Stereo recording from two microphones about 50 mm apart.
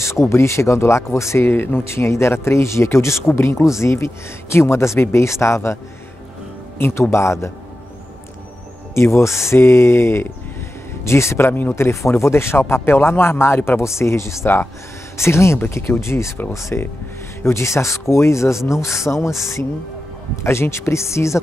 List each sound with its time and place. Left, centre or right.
0.0 s speech: left
1.5 s speech: left
6.8 s speech: left
8.9 s speech: left
14.4 s speech: left
15.1 s speech: left
17.4 s speech: left
20.4 s speech: left